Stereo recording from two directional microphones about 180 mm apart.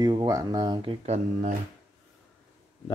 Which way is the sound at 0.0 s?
20° right (ahead or behind).